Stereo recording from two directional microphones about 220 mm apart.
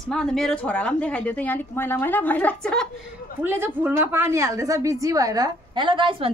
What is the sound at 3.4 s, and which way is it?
A woman's voice, 10° right (ahead or behind).